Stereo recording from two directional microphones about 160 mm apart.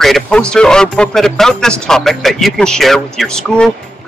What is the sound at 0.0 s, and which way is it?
Speech, 5° left (ahead or behind).